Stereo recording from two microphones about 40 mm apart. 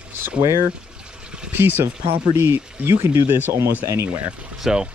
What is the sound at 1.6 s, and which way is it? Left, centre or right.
Speech, right.